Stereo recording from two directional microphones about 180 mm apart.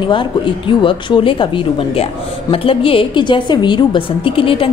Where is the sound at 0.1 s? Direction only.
25° left (ahead or behind).